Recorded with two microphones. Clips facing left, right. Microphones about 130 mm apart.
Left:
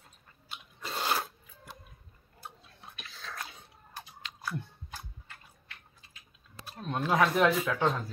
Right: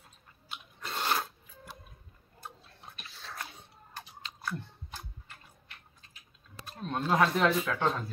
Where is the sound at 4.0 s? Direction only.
10° left (ahead or behind).